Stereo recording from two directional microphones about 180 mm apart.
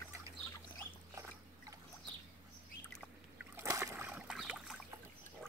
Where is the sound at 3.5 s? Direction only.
15° right (ahead or behind).